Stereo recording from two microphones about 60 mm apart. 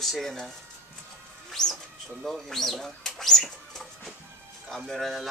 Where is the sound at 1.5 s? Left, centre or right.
Centre.